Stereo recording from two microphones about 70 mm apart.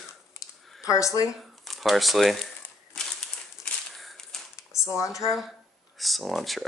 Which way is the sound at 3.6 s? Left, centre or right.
Centre.